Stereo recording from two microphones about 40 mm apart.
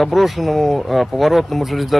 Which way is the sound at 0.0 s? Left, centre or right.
Centre.